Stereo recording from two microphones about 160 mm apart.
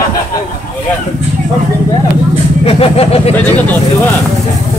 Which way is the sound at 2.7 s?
35° left (ahead or behind).